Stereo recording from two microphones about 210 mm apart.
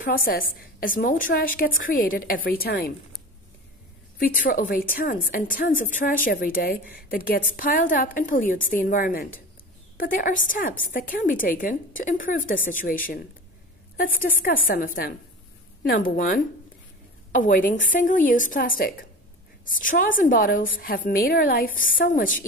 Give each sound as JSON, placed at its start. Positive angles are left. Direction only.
{"t": 0.0, "sound": "a woman's voice", "side_deg": 45}
{"t": 4.5, "sound": "a woman's voice", "side_deg": 40}
{"t": 17.4, "sound": "a woman's voice", "side_deg": 40}